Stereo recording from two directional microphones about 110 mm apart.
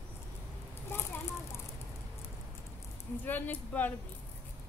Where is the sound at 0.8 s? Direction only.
20° left (ahead or behind).